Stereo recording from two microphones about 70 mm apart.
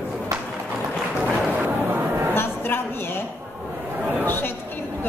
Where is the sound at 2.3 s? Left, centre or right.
Left.